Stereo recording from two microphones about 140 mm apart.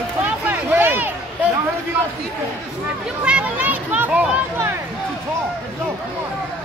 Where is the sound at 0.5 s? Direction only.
15° right (ahead or behind).